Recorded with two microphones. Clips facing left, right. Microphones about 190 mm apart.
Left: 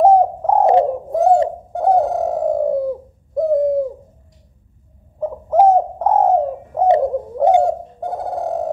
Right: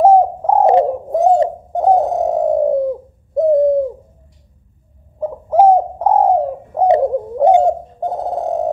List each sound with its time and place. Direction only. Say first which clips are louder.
0.0 s bird: right 2 dB; 10° right (ahead or behind)
1.1 s bird: right 1 dB; 20° right (ahead or behind)
5.2 s bird: right 2 dB; 10° right (ahead or behind)
7.6 s bird: right 3 dB; 20° right (ahead or behind)